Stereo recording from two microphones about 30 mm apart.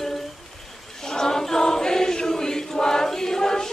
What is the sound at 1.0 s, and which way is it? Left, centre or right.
Choir, centre.